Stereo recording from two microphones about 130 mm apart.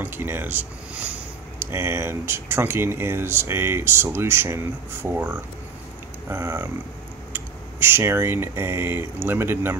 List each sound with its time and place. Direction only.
0.0 s speech: 15° right (ahead or behind)